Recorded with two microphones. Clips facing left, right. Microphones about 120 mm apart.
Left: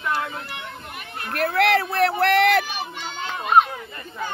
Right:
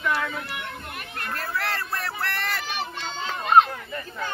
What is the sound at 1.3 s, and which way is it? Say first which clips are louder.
Speech: left 11 dB; 70° left (ahead or behind).